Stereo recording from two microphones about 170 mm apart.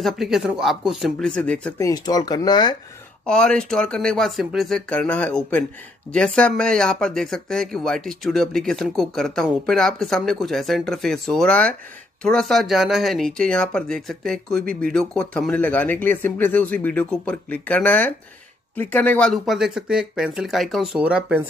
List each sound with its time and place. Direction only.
0.0 s speech: centre (ahead or behind)
1.8 s speech: 20° left (ahead or behind)
3.3 s speech: 5° left (ahead or behind)